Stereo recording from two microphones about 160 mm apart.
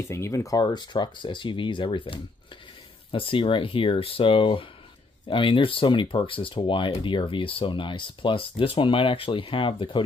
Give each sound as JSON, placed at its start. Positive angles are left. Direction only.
{"t": 0.0, "sound": "speech", "side_deg": 20}